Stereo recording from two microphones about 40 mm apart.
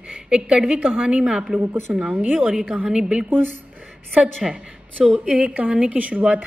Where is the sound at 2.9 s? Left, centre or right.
Right.